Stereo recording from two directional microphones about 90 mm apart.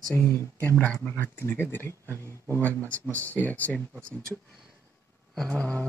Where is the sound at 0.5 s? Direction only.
15° left (ahead or behind).